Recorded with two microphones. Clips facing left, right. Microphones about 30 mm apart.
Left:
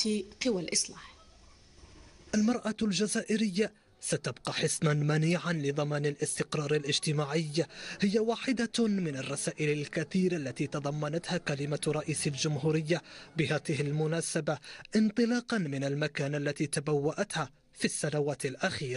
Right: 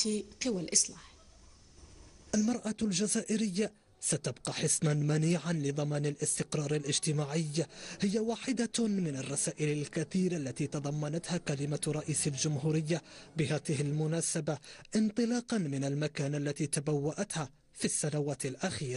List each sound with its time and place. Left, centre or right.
0.0 s a man's voice: left
2.3 s a man's voice: left